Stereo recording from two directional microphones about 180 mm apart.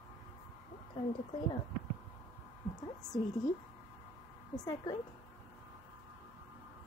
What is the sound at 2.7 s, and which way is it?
Speech, 20° left (ahead or behind).